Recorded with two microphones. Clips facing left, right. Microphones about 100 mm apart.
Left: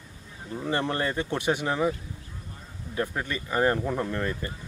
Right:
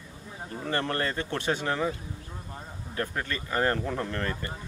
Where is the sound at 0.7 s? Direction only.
15° left (ahead or behind).